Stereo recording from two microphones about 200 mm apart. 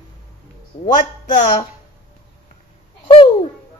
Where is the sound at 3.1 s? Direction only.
25° left (ahead or behind).